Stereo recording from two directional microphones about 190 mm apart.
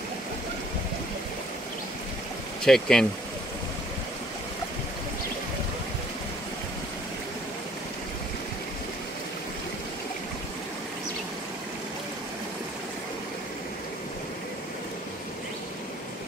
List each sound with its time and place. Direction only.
2.6 s speech: 5° left (ahead or behind)